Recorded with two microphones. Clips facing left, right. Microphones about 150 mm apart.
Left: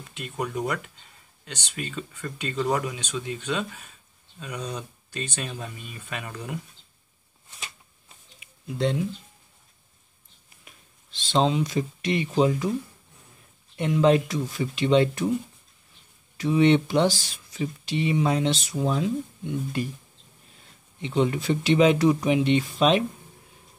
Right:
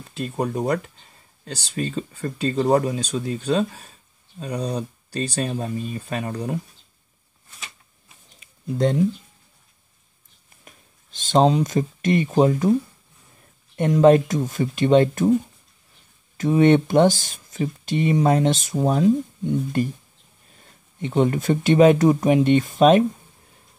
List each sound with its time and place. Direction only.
0.1 s speech: 35° right (ahead or behind)
8.7 s speech: 45° right (ahead or behind)
10.6 s speech: 45° right (ahead or behind)
13.7 s speech: 45° right (ahead or behind)
16.3 s speech: 45° right (ahead or behind)
21.0 s speech: 50° right (ahead or behind)